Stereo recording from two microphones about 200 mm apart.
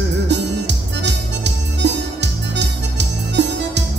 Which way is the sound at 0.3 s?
60° right (ahead or behind).